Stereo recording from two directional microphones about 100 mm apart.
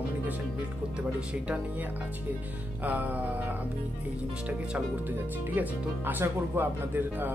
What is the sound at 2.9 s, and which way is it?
Speech, 15° right (ahead or behind).